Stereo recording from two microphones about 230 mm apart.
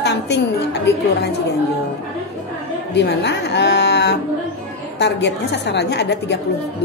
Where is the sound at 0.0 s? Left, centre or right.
Left.